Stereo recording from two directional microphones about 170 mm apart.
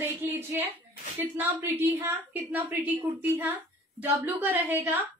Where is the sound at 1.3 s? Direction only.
15° right (ahead or behind).